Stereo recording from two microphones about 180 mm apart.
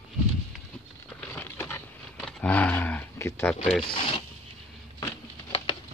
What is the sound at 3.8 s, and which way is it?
Speech, 25° left (ahead or behind).